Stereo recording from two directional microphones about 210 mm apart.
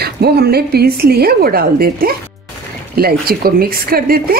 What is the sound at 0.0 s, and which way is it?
A woman's voice, 50° right (ahead or behind).